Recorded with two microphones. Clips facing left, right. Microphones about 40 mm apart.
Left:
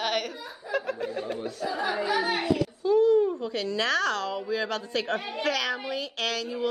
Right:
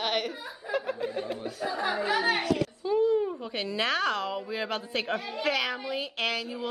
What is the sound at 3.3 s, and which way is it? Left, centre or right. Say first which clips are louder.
A woman's voice: left 3 dB; right.